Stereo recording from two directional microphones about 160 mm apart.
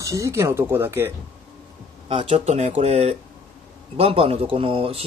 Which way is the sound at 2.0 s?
35° right (ahead or behind).